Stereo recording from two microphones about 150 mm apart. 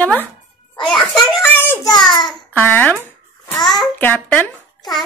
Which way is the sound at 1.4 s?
15° left (ahead or behind).